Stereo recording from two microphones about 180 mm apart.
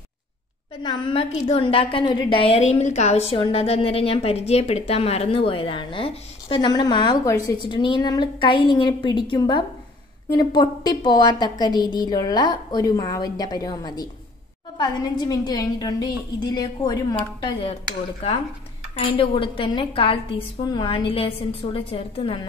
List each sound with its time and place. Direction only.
0.8 s a woman's voice: 30° left (ahead or behind)